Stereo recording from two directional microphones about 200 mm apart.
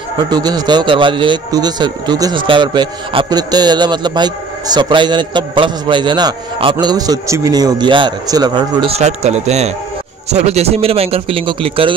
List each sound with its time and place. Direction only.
0.3 s speech: 20° right (ahead or behind)